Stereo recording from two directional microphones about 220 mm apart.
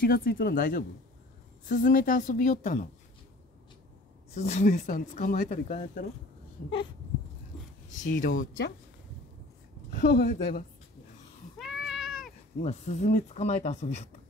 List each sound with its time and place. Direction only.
0.0 s speech: 40° left (ahead or behind)
4.4 s speech: 30° left (ahead or behind)
7.9 s speech: 35° left (ahead or behind)
9.8 s speech: 45° left (ahead or behind)
11.5 s cat: centre (ahead or behind)
12.6 s speech: 30° left (ahead or behind)